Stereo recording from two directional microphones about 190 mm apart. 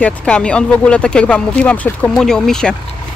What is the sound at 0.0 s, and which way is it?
Speech, 5° left (ahead or behind).